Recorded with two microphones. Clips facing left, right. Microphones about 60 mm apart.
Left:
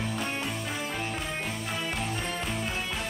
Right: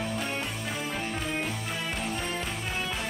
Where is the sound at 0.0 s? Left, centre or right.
Centre.